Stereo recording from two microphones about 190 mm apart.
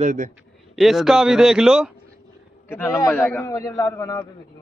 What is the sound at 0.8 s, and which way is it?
A man's voice, centre (ahead or behind).